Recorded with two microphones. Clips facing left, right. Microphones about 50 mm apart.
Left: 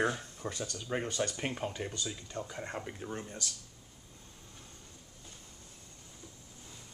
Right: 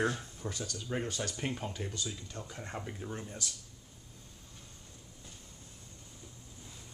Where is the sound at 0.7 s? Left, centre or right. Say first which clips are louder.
Left 1 dB; centre.